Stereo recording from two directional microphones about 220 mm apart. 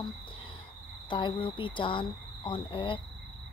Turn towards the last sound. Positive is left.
turn(degrees=20)  # may be behind; listen again after turning